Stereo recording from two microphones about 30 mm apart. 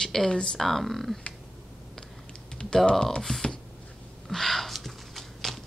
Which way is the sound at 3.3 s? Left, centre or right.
Left.